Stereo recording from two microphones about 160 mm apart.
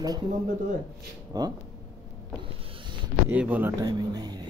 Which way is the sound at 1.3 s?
25° right (ahead or behind).